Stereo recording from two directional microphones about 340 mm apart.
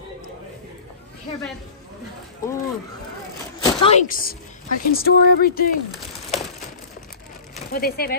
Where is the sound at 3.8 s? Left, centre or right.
Left.